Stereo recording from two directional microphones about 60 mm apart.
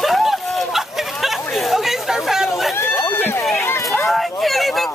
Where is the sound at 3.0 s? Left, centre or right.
Left.